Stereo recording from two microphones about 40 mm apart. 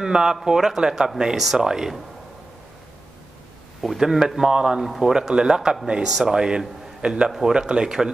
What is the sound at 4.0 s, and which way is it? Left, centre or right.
A man's voice, centre.